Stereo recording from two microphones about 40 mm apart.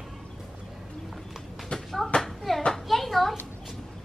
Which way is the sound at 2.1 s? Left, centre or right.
Left.